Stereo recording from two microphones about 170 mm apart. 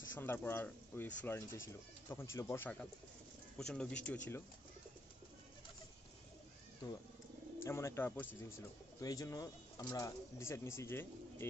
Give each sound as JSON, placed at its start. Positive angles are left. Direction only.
{"t": 0.1, "sound": "speech", "side_deg": 10}
{"t": 6.8, "sound": "wild animals", "side_deg": 20}
{"t": 7.6, "sound": "speech", "side_deg": 15}